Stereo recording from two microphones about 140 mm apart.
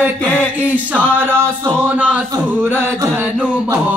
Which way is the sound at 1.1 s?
15° right (ahead or behind).